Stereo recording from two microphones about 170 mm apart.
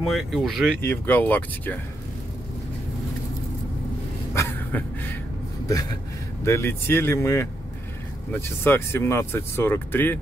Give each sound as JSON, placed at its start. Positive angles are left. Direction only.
{"t": 0.0, "sound": "speech", "side_deg": 0}
{"t": 0.7, "sound": "speech", "side_deg": 10}
{"t": 4.3, "sound": "a sound", "side_deg": 15}
{"t": 5.7, "sound": "speech", "side_deg": 20}